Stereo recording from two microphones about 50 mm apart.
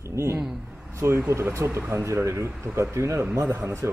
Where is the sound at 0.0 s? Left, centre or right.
Right.